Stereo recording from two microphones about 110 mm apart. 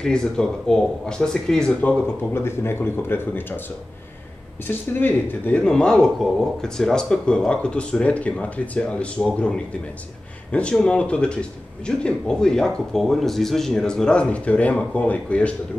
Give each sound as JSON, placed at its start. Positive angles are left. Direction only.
{"t": 0.0, "sound": "speech", "side_deg": 5}
{"t": 2.3, "sound": "speech", "side_deg": 20}
{"t": 4.6, "sound": "speech", "side_deg": 20}